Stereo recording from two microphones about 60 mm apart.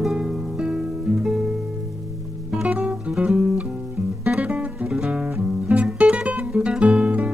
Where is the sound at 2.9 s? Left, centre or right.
Centre.